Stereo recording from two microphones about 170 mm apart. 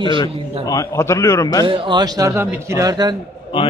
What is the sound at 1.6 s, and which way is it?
Speech, 30° right (ahead or behind).